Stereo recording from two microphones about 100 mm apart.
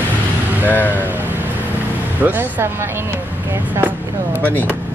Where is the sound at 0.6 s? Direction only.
20° left (ahead or behind).